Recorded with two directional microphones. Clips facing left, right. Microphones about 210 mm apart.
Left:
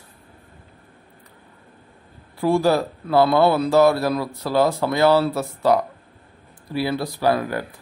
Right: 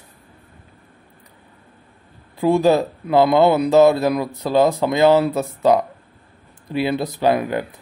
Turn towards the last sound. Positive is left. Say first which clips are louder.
# right 2 dB
turn(degrees=-20)  # may be behind; listen again after turning